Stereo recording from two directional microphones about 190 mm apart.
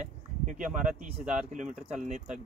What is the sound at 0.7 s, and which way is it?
Speech, 5° right (ahead or behind).